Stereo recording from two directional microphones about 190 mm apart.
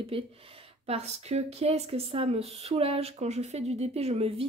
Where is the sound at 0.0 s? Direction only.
30° right (ahead or behind).